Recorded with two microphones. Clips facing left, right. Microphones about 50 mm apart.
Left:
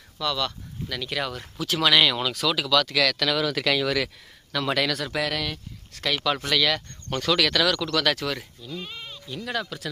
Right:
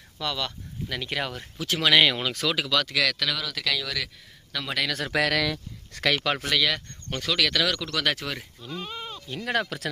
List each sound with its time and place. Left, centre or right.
0.2 s speech: right
3.3 s speech: left
4.5 s speech: centre
5.1 s speech: right
6.4 s speech: centre
8.5 s speech: right
8.9 s bleat: centre
9.3 s speech: right